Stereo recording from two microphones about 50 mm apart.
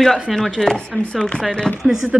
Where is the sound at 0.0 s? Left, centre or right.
Centre.